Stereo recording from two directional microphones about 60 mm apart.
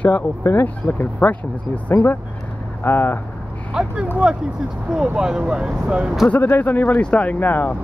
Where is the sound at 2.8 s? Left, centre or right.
Left.